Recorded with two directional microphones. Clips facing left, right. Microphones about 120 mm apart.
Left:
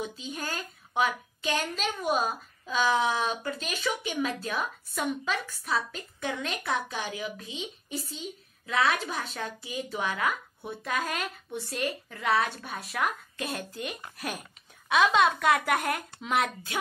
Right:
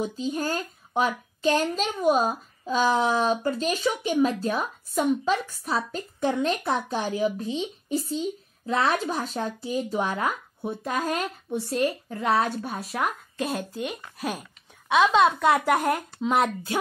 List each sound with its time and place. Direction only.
0.0 s a woman's voice: 40° right (ahead or behind)
14.9 s a woman's voice: 20° right (ahead or behind)